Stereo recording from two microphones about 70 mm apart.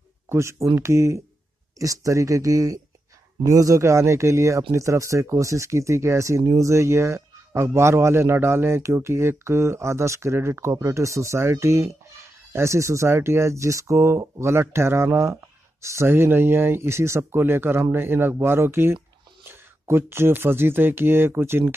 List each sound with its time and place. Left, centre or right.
0.3 s speech: right